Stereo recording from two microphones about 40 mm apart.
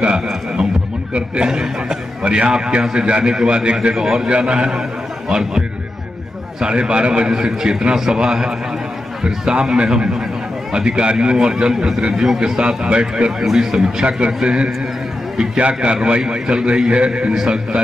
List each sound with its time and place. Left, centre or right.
1.1 s a man's voice: right
6.6 s a man's voice: right
13.5 s a man's voice: centre
14.0 s a man's voice: right
17.3 s a man's voice: centre